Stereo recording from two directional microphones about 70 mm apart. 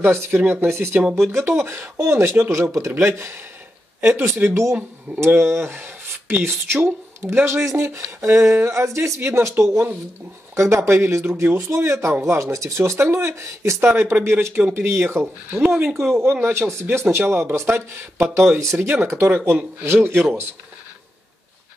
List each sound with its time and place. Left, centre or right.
0.0 s speech: right